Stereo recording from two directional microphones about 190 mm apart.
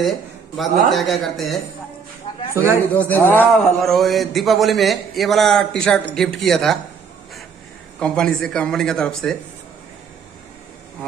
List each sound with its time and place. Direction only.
0.6 s a man's voice: centre (ahead or behind)
2.5 s speech: 15° right (ahead or behind)
2.9 s a man's voice: 10° left (ahead or behind)
8.0 s a man's voice: 5° left (ahead or behind)